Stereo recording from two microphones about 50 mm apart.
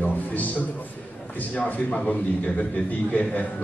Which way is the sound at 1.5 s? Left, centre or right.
Left.